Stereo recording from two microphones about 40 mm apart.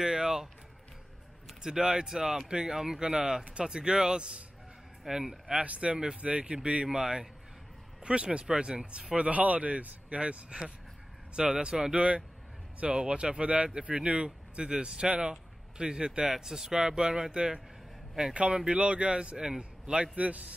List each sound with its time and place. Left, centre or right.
0.0 s music: centre
1.6 s speech: centre
5.0 s speech: centre
5.5 s speech: right
8.0 s speech: right
18.3 s a man's voice: right
20.2 s a man's voice: right